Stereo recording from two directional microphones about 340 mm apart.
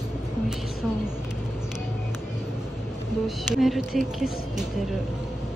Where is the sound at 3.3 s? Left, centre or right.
Centre.